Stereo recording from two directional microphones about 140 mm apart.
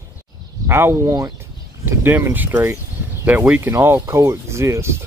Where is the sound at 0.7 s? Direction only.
15° right (ahead or behind).